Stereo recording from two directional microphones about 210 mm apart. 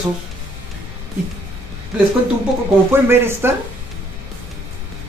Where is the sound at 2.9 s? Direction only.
10° right (ahead or behind).